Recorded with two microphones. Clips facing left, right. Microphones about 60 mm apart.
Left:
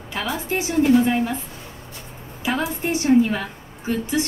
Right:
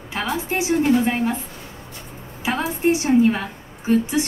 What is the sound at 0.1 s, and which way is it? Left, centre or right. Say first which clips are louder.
Speech: right 1 dB; right.